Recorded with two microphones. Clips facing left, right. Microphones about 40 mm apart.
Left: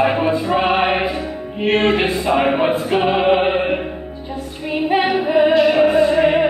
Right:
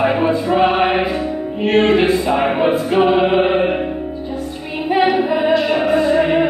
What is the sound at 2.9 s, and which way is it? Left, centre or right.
Music, centre.